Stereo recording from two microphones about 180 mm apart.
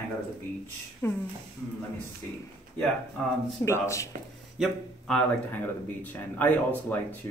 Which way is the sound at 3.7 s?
15° left (ahead or behind).